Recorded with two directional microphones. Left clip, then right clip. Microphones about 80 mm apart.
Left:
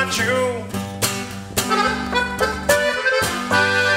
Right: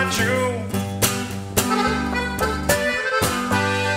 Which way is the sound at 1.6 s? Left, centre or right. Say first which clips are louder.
Left 3 dB; left.